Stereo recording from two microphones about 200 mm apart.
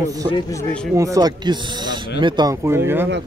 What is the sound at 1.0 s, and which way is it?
Speech, 15° right (ahead or behind).